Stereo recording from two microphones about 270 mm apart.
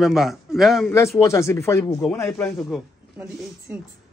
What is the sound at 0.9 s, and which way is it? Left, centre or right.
Speech, centre.